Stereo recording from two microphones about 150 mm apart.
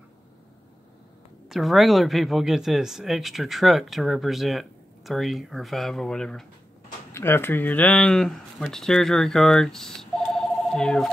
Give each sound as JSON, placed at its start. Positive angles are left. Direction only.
{"t": 1.5, "sound": "speech", "side_deg": 0}
{"t": 7.1, "sound": "speech", "side_deg": 15}